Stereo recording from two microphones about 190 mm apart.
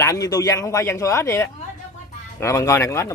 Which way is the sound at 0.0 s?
15° left (ahead or behind).